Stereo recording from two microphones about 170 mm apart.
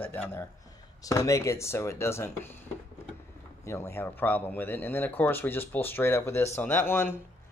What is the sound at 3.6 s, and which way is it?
A man's voice, 15° left (ahead or behind).